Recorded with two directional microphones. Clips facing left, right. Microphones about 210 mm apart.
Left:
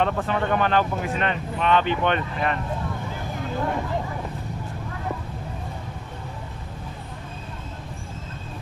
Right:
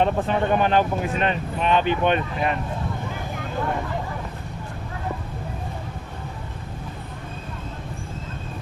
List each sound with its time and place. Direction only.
0.0 s speech: 20° right (ahead or behind)